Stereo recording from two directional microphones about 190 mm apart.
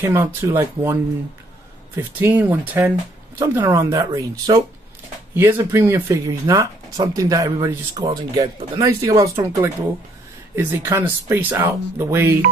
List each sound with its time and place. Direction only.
0.0 s speech: 15° right (ahead or behind)
2.0 s speech: 10° right (ahead or behind)